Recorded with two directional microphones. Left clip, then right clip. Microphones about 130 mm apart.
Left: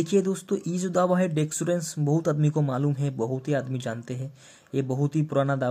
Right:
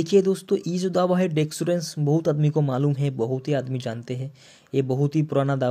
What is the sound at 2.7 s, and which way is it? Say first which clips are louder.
A man's voice: right 3 dB; 30° right (ahead or behind).